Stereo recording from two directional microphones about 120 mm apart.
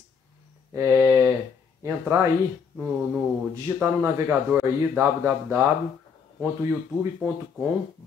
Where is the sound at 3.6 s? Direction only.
20° right (ahead or behind).